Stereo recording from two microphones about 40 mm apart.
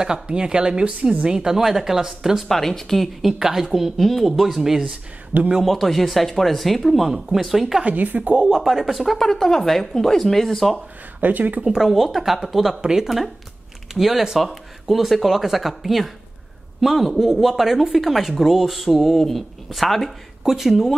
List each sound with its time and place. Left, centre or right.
0.0 s speech: right
2.4 s speech: centre
3.3 s speech: centre
5.3 s speech: right
5.7 s speech: centre
7.1 s speech: centre
7.9 s speech: right
8.4 s speech: centre
9.2 s speech: centre
11.1 s speech: right
11.9 s speech: centre
19.1 s speech: centre